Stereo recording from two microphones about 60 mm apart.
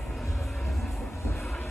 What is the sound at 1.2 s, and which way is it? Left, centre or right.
Vehicle, left.